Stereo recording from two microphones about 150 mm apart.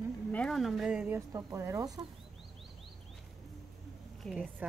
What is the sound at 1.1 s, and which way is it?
Speech, 20° right (ahead or behind).